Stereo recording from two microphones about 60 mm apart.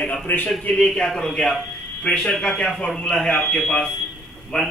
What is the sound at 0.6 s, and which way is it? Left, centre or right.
Speech, centre.